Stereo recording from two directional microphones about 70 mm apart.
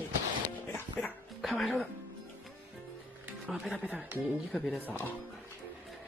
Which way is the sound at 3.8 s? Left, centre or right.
Right.